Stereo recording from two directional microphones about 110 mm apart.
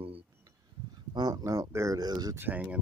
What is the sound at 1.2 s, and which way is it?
Speech, 35° right (ahead or behind).